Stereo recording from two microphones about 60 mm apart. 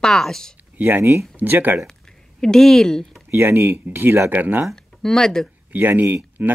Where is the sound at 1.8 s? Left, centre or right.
Centre.